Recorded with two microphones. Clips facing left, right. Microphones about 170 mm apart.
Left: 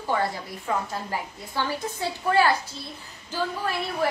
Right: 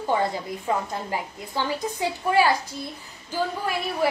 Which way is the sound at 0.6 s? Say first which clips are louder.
Right 1 dB; 15° right (ahead or behind).